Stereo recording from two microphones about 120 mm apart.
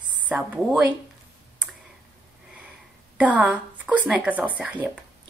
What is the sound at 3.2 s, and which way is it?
Speech, 10° right (ahead or behind).